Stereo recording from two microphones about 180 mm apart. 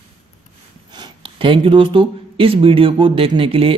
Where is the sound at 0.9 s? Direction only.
25° right (ahead or behind).